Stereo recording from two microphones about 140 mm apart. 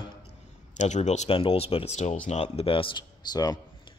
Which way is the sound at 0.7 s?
55° left (ahead or behind).